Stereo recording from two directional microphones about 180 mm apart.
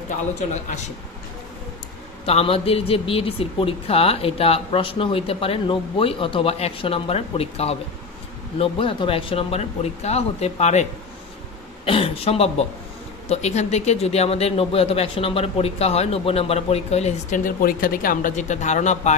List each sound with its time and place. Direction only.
2.2 s speech: 30° left (ahead or behind)